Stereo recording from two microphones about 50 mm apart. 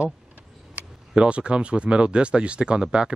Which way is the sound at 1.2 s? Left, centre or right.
Right.